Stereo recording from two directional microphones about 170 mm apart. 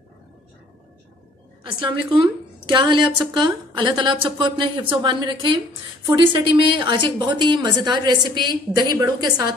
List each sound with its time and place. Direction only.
1.6 s a woman's voice: 30° right (ahead or behind)